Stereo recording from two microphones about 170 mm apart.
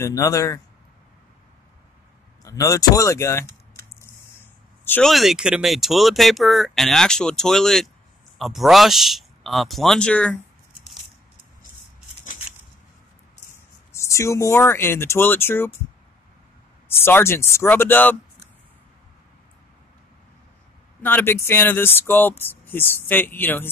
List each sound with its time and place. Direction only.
0.0 s speech: 15° left (ahead or behind)
2.4 s speech: 20° left (ahead or behind)
4.8 s speech: 10° left (ahead or behind)
5.1 s speech: centre (ahead or behind)
13.9 s speech: 15° left (ahead or behind)
16.9 s speech: 15° left (ahead or behind)
21.0 s speech: 10° left (ahead or behind)